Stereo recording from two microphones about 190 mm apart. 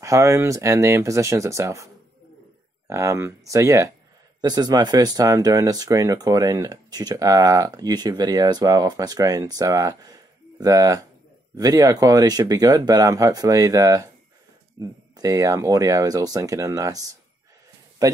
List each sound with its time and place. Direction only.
0.0 s speech: 15° right (ahead or behind)
2.9 s speech: 15° right (ahead or behind)